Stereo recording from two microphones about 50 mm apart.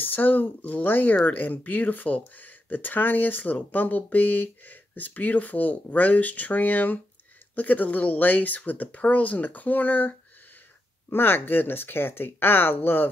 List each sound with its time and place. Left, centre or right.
0.0 s speech: left
11.1 s speech: left